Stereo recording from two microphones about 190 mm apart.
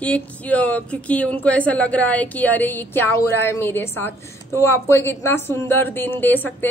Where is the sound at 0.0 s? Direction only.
5° left (ahead or behind).